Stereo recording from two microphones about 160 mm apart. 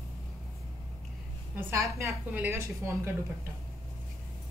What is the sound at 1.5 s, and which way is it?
A woman's voice, 15° right (ahead or behind).